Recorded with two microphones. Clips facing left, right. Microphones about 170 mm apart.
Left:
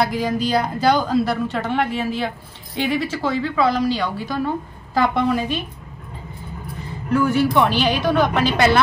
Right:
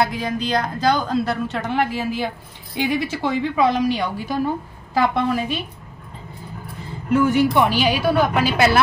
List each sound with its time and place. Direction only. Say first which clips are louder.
0.0 s a woman's voice: left 2 dB; 10° left (ahead or behind); by 4.4 s 20° right (ahead or behind)
4.9 s a woman's voice: left 1 dB; centre (ahead or behind)
7.2 s a woman's voice: right 1 dB; 20° right (ahead or behind)